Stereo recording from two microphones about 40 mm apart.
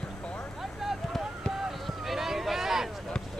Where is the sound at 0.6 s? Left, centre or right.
Centre.